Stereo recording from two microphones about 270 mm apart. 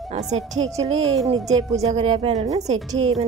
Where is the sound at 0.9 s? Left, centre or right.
Right.